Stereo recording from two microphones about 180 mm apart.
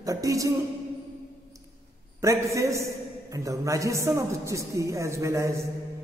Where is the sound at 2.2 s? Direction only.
15° right (ahead or behind).